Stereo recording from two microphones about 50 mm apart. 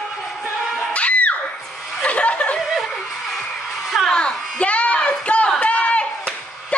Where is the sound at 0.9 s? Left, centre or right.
Left.